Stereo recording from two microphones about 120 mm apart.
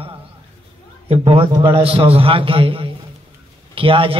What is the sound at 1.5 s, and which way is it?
Music, 40° right (ahead or behind).